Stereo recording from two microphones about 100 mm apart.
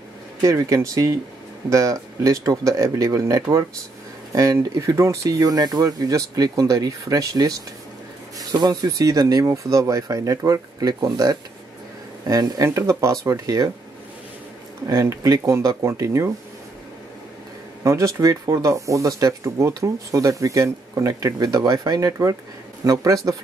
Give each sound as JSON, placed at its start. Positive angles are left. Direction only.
{"t": 0.4, "sound": "speech", "side_deg": -35}
{"t": 14.9, "sound": "speech", "side_deg": -30}
{"t": 17.8, "sound": "speech", "side_deg": -30}